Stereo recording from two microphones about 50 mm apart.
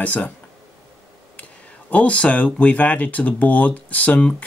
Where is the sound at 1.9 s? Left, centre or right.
Left.